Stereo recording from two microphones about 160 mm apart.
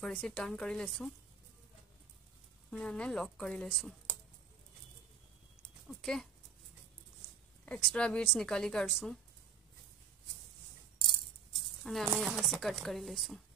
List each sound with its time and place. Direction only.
0.0 s speech: 5° left (ahead or behind)
2.7 s speech: 5° left (ahead or behind)
5.9 s speech: centre (ahead or behind)
7.6 s speech: 5° left (ahead or behind)
11.0 s music: 30° left (ahead or behind)
11.8 s speech: centre (ahead or behind)